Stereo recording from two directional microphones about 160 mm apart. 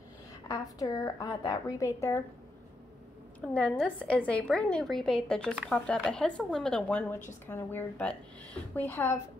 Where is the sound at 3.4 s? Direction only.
10° left (ahead or behind).